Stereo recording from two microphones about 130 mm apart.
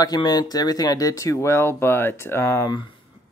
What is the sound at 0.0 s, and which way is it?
Speech, 30° left (ahead or behind).